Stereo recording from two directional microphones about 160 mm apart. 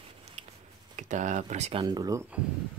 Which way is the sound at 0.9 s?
50° right (ahead or behind).